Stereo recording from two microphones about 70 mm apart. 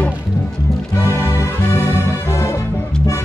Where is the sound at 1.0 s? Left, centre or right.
Left.